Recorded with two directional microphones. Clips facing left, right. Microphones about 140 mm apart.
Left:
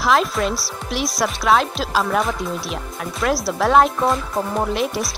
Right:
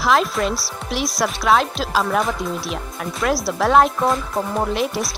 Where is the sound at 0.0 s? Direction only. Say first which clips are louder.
Even; centre (ahead or behind).